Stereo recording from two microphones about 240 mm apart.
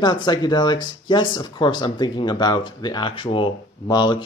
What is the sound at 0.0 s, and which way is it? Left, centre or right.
Speech, centre.